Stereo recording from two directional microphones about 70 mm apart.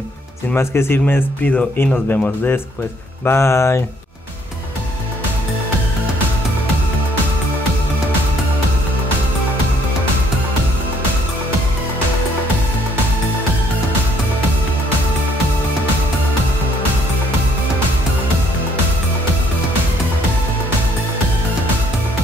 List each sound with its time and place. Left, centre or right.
0.6 s speech: left
3.3 s speech: left